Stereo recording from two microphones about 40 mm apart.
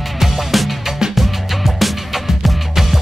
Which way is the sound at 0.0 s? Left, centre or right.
Centre.